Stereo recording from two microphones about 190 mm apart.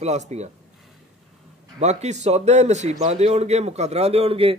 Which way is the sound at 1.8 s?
35° right (ahead or behind).